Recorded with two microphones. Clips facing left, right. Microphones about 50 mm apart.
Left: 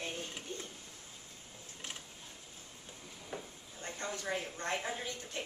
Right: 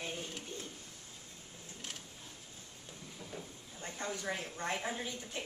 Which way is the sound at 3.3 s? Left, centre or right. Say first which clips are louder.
Left 3 dB; left.